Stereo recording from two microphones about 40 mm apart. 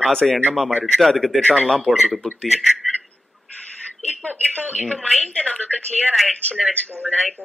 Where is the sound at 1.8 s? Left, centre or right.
Centre.